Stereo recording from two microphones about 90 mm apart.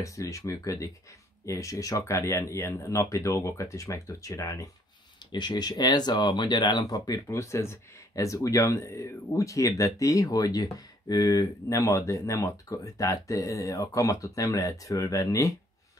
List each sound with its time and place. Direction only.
0.0 s speech: 35° left (ahead or behind)
5.3 s speech: 55° left (ahead or behind)
7.2 s speech: 30° left (ahead or behind)